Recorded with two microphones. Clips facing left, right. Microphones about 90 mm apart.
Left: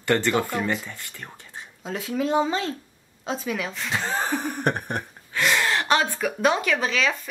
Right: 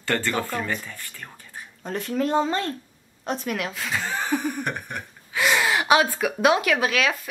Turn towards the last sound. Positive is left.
turn(degrees=-5)  # may be behind; listen again after turning